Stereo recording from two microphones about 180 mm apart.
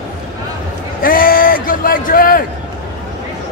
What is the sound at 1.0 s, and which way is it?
A man's voice, 50° left (ahead or behind).